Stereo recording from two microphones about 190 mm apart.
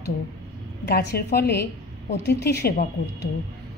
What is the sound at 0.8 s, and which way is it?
A woman's voice, 60° left (ahead or behind).